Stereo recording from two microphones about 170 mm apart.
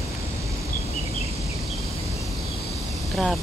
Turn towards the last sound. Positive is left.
turn(degrees=0)  # may be behind; listen again after turning